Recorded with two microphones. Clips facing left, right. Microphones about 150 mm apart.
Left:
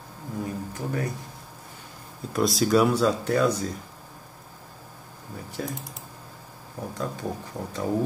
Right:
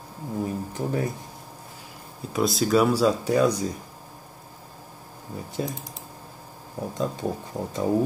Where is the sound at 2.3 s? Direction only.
Centre (ahead or behind).